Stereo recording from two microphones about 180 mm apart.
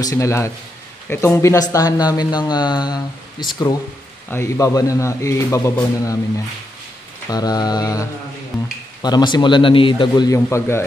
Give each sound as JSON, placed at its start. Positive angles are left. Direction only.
{"t": 0.0, "sound": "a man's voice", "side_deg": 15}